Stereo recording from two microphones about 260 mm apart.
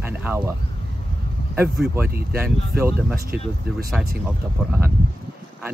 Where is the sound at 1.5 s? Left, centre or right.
Centre.